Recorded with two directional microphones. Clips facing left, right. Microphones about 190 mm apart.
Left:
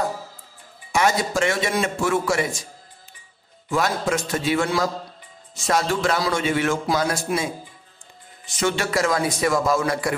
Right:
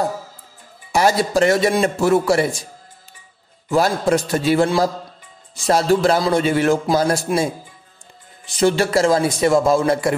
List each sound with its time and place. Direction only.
0.9 s a man's voice: 35° right (ahead or behind)
3.6 s a man's voice: 35° right (ahead or behind)
8.5 s a man's voice: 35° right (ahead or behind)